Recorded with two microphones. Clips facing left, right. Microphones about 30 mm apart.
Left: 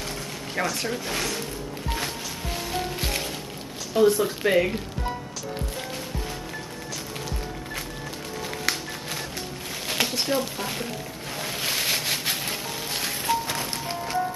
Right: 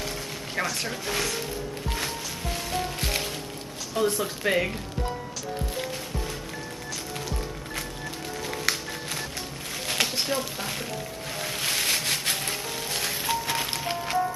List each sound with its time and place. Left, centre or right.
0.6 s speech: centre
1.9 s music: centre
3.9 s speech: centre
8.7 s music: centre
9.8 s a sound: centre
11.3 s music: centre
13.7 s music: right